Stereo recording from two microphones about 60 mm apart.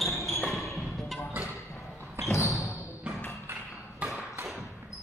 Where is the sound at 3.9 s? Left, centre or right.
Centre.